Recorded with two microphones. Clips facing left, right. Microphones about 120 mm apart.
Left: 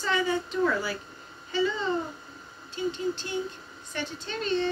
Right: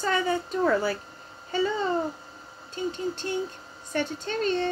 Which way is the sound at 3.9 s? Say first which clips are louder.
Right 6 dB; 50° right (ahead or behind).